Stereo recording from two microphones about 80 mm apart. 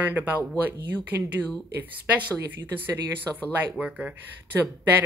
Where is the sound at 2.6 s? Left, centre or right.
Right.